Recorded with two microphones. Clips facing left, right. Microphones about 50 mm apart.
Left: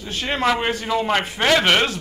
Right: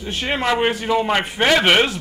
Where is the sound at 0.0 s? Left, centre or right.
Centre.